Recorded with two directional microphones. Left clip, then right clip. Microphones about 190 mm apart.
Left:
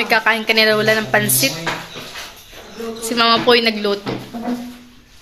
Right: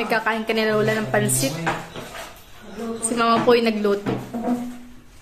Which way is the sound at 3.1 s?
Centre (ahead or behind).